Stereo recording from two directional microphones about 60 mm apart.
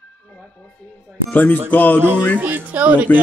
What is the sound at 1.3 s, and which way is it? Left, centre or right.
Speech, left.